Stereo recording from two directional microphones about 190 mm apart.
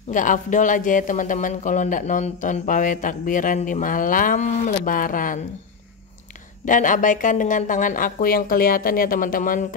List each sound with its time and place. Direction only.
0.1 s speech: 45° left (ahead or behind)
6.6 s speech: 45° left (ahead or behind)